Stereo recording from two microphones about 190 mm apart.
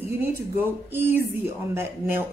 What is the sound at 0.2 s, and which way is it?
Speech, 10° right (ahead or behind).